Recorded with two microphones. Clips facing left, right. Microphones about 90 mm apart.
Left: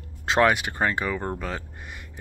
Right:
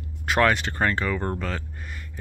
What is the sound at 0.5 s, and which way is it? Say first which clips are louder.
Speech: even; 15° left (ahead or behind).